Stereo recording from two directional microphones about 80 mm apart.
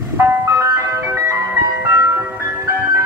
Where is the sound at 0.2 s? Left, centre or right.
Right.